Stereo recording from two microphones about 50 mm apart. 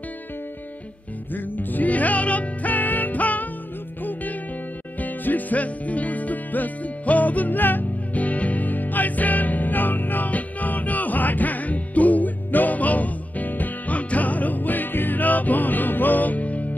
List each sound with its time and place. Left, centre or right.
1.3 s music: left